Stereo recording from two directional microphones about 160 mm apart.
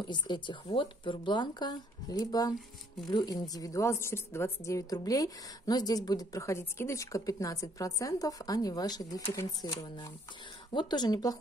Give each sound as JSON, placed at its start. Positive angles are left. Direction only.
{"t": 0.0, "sound": "a woman's voice", "side_deg": 30}